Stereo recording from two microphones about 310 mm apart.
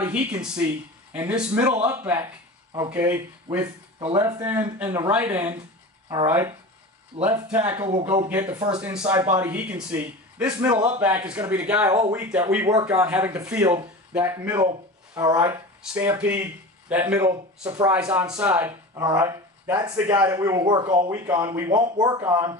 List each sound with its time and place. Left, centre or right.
0.0 s speech: centre
7.2 s speech: centre
7.4 s speech: centre